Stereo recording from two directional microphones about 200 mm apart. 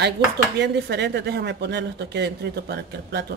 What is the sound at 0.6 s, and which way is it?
Speech, 60° right (ahead or behind).